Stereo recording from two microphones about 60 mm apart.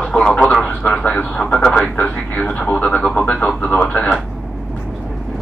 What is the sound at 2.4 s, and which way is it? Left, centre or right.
Radio, centre.